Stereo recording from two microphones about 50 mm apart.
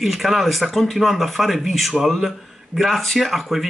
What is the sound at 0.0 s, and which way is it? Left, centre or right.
Speech, centre.